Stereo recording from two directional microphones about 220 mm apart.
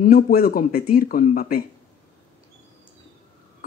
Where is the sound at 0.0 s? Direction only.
40° left (ahead or behind).